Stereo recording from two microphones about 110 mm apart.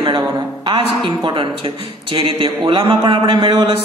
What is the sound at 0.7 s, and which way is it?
Speech, 50° right (ahead or behind).